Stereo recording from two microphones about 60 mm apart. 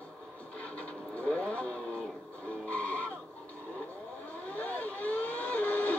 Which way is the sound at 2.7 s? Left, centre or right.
Left.